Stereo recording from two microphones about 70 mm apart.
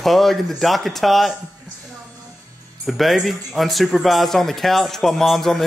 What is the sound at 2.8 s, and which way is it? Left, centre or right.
Speech, centre.